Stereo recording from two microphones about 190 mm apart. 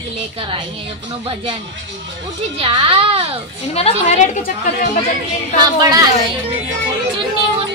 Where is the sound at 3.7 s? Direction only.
35° left (ahead or behind).